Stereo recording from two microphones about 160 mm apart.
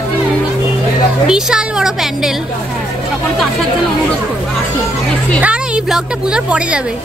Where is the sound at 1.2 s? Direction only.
5° right (ahead or behind).